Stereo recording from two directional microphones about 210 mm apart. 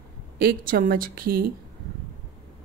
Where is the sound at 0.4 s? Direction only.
45° right (ahead or behind).